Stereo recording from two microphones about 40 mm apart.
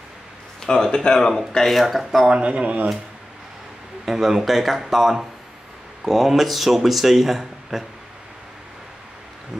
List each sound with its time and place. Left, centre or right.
0.6 s speech: centre
1.6 s speech: centre
2.2 s speech: right
4.0 s speech: centre